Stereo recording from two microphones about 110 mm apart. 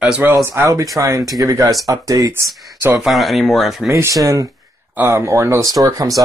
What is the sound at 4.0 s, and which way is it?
Speech, 30° right (ahead or behind).